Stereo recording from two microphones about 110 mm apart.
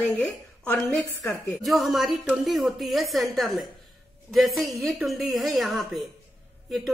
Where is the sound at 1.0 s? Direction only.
30° left (ahead or behind).